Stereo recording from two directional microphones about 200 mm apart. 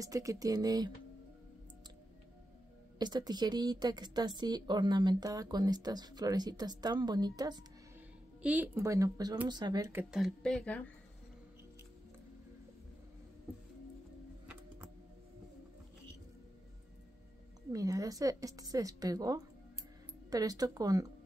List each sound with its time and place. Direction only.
0.0 s a woman's voice: 15° right (ahead or behind)
3.0 s speech: 20° right (ahead or behind)
8.4 s a woman's voice: 5° right (ahead or behind)
10.1 s speech: centre (ahead or behind)
17.7 s a woman's voice: 15° right (ahead or behind)